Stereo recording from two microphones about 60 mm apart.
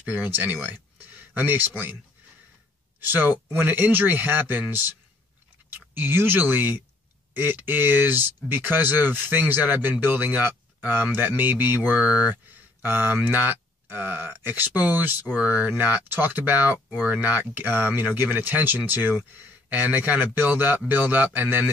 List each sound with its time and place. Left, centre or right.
0.1 s speech: right
3.0 s speech: right
12.0 s speech: centre
12.8 s speech: right